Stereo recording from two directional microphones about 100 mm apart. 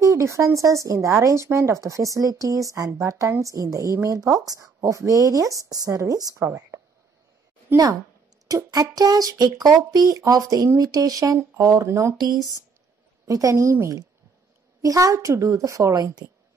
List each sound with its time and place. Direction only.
0.0 s a woman's voice: 30° right (ahead or behind)
8.5 s a woman's voice: 35° right (ahead or behind)
13.3 s a woman's voice: 35° right (ahead or behind)